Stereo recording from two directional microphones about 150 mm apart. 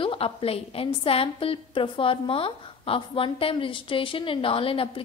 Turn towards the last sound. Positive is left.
turn(degrees=35)  # may be behind; listen again after turning